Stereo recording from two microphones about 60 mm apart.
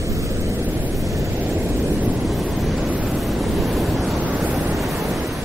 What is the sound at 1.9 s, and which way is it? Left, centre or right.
Waves, right.